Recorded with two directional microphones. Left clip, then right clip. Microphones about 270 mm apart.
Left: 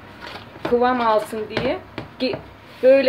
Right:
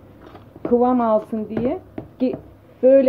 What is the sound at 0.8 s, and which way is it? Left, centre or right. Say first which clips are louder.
Speech: even; right.